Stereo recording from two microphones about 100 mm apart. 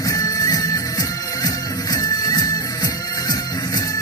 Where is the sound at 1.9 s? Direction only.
40° left (ahead or behind).